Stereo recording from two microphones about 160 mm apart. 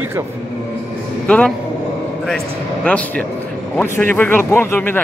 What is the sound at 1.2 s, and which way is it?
A man's voice, 5° left (ahead or behind).